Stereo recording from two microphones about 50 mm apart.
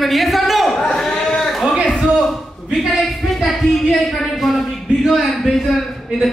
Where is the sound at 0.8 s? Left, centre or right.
Centre.